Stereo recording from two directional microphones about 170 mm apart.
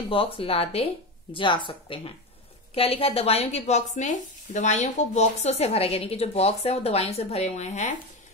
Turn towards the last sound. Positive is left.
turn(degrees=45)  # may be behind; listen again after turning